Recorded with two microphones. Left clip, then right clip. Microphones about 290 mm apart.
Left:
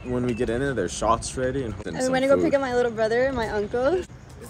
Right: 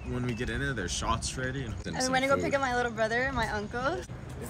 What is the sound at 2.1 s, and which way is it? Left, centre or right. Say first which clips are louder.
Speech: left 7 dB; centre.